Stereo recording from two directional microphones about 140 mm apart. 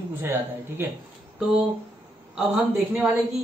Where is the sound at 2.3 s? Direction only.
5° right (ahead or behind).